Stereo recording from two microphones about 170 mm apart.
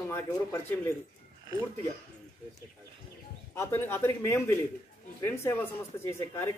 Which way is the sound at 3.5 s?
15° left (ahead or behind).